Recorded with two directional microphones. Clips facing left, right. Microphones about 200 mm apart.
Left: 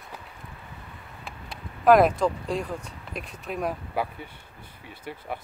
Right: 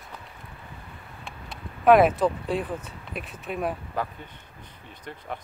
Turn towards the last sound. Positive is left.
turn(degrees=10)  # may be behind; listen again after turning